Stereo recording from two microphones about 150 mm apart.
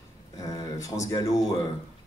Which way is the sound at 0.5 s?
20° left (ahead or behind).